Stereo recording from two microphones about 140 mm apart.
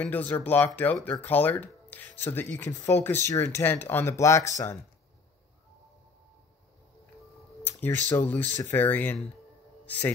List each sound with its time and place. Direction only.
0.0 s speech: 10° left (ahead or behind)
7.8 s a man's voice: 15° left (ahead or behind)